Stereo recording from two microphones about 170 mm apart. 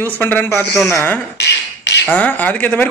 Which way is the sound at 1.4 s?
90° left.